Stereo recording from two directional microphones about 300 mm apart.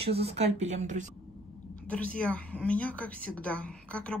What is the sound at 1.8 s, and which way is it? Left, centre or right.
Speech, centre.